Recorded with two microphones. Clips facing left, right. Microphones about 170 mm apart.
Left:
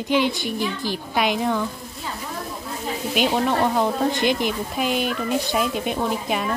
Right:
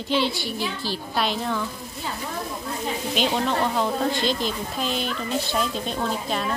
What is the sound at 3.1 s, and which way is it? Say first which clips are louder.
A woman's voice: left 3 dB; 10° left (ahead or behind).